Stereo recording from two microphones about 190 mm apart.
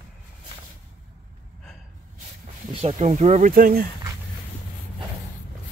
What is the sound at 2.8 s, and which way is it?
Speech, 35° right (ahead or behind).